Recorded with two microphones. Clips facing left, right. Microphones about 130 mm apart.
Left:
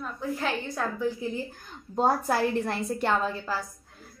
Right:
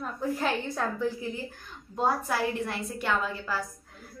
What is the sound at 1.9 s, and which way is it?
A woman's voice, 40° left (ahead or behind).